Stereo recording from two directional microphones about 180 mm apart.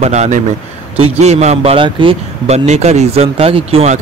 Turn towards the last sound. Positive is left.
turn(degrees=-30)  # may be behind; listen again after turning